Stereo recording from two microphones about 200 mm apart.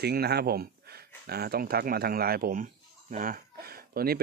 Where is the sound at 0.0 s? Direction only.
55° right (ahead or behind).